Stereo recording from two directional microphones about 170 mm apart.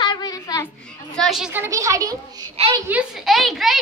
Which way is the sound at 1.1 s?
Centre (ahead or behind).